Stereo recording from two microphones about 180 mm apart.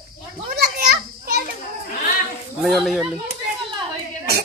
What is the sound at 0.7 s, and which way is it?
Children playing, 55° right (ahead or behind).